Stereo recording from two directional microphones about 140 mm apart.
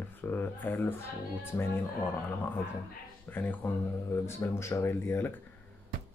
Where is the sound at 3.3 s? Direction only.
15° left (ahead or behind).